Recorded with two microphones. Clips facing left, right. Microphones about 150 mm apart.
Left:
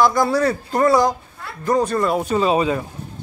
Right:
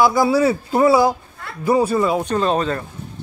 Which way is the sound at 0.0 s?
5° right (ahead or behind).